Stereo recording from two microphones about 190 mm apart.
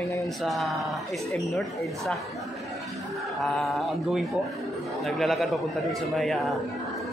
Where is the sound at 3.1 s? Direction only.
Centre (ahead or behind).